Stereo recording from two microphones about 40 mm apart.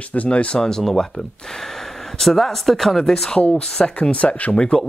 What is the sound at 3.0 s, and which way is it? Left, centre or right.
Speech, centre.